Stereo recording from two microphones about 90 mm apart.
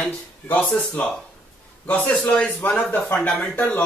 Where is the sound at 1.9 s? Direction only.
20° left (ahead or behind).